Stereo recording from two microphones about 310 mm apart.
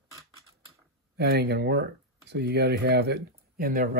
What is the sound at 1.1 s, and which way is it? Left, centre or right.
Speech, right.